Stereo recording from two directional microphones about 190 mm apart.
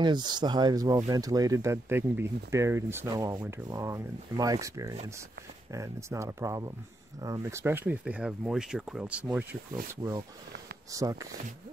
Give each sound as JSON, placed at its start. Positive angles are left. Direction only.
{"t": 0.0, "sound": "speech", "side_deg": -20}
{"t": 10.9, "sound": "speech", "side_deg": -15}